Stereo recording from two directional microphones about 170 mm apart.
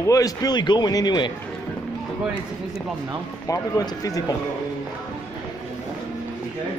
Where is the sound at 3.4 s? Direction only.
20° left (ahead or behind).